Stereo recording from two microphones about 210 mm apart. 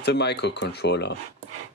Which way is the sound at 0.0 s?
50° left (ahead or behind).